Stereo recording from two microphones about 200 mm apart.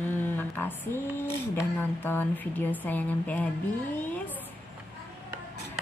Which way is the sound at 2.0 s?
10° left (ahead or behind).